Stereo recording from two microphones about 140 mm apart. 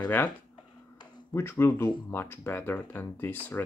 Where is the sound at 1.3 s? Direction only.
15° left (ahead or behind).